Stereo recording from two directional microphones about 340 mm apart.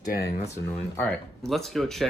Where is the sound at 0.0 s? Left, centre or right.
Left.